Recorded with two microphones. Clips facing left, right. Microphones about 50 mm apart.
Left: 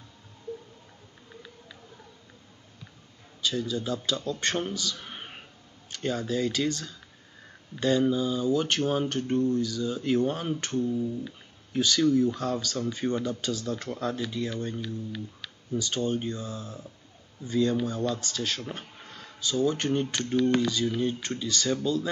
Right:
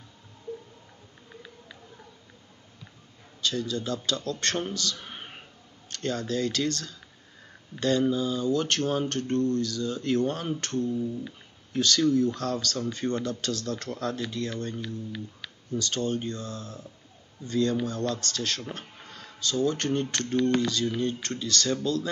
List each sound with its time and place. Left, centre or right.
3.3 s speech: centre
5.0 s whispering: centre
5.9 s speech: centre